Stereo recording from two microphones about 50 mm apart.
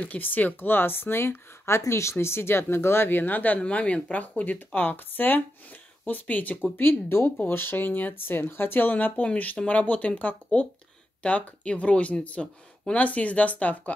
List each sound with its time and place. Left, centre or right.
0.0 s speech: left
3.6 s speech: left
6.8 s speech: left
7.2 s speech: left